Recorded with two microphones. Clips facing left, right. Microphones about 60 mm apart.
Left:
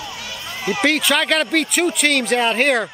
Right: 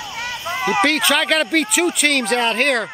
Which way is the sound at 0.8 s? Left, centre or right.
Centre.